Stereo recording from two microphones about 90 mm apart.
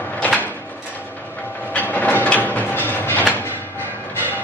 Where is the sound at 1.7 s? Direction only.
15° left (ahead or behind).